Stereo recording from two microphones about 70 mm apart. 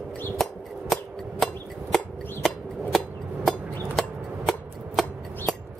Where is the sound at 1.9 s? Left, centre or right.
Centre.